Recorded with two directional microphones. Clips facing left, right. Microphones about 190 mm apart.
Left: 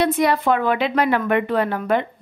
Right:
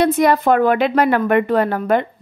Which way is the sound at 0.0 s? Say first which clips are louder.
Right 4 dB; 45° right (ahead or behind).